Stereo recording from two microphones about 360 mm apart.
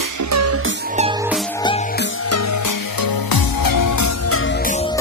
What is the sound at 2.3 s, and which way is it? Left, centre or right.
Music, left.